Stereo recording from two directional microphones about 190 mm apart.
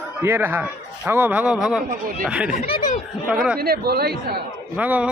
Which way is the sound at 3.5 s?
55° right (ahead or behind).